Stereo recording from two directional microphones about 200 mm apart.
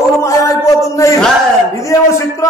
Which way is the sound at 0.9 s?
15° left (ahead or behind).